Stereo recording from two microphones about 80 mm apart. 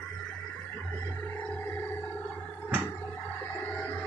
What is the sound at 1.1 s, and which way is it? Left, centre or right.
Music, left.